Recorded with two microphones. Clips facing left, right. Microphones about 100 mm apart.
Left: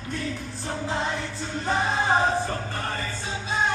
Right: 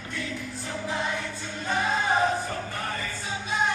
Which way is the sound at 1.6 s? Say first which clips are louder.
Left 2 dB; 30° left (ahead or behind).